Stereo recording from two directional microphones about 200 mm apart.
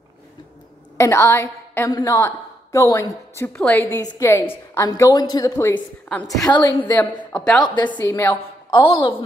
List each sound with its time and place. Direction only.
0.9 s a woman's voice: 15° left (ahead or behind)
8.7 s a woman's voice: 25° left (ahead or behind)